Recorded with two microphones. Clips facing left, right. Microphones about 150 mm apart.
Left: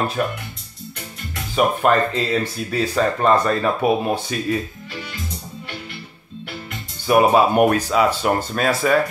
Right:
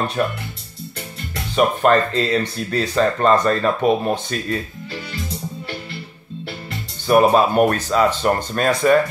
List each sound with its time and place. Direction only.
0.2 s speech: 5° left (ahead or behind)
1.5 s speech: 5° left (ahead or behind)
7.1 s speech: 10° left (ahead or behind)